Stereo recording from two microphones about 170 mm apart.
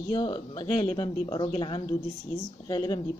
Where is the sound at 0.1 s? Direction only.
25° left (ahead or behind).